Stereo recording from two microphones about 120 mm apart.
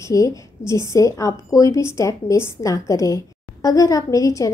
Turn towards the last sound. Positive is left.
turn(degrees=25)  # may be behind; listen again after turning